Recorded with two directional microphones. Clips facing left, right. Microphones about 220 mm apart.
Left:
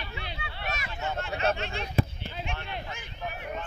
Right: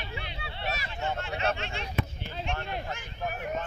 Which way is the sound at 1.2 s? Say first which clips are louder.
Left 5 dB; 45° left (ahead or behind).